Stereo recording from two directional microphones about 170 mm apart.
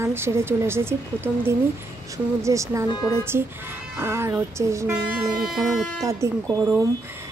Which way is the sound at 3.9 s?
15° right (ahead or behind).